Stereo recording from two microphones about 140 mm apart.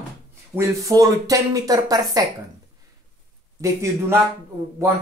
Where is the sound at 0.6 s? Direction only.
25° right (ahead or behind).